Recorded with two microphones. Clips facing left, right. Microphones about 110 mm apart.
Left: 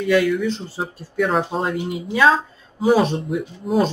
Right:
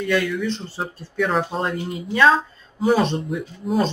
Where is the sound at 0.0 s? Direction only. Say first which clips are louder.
Left 4 dB; 10° left (ahead or behind).